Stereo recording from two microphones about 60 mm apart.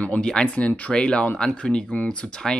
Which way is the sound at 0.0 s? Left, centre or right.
Left.